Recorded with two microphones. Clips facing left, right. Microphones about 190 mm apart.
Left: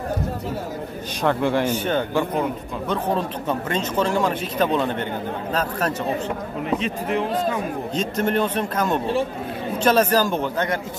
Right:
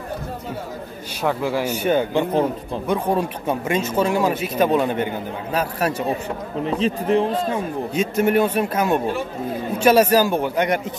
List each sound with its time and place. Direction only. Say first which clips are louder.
1.2 s speech: left 1 dB; 5° right (ahead or behind)
6.6 s speech: right 4 dB; 30° right (ahead or behind)
7.9 s speech: right 4 dB; 10° right (ahead or behind)